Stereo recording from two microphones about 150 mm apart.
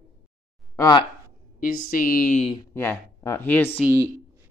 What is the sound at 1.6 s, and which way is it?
Speech, 75° left (ahead or behind).